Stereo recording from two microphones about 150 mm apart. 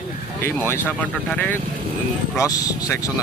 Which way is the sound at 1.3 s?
10° left (ahead or behind).